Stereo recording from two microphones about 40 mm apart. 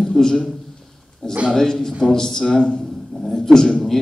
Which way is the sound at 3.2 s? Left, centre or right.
Centre.